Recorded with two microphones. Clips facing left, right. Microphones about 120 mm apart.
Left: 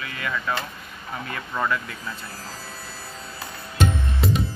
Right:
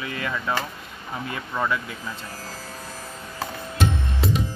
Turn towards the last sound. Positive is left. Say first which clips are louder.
# left 1 dB
turn(degrees=0)  # may be behind; listen again after turning